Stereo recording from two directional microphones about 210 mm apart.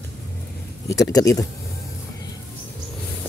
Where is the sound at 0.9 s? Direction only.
15° left (ahead or behind).